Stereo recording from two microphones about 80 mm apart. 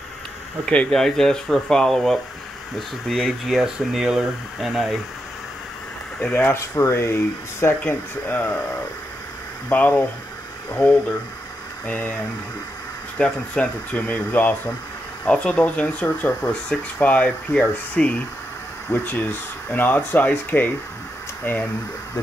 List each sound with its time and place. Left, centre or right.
0.8 s speech: centre
6.2 s speech: left
6.7 s speech: left
7.8 s speech: left
9.7 s speech: left
13.2 s speech: centre